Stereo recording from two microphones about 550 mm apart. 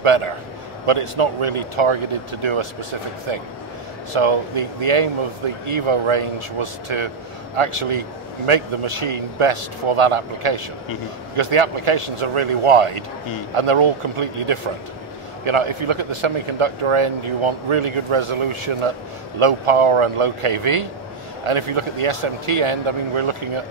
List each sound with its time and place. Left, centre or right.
0.0 s speech: right